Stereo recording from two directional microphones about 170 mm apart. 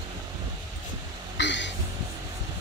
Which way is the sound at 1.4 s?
90° left.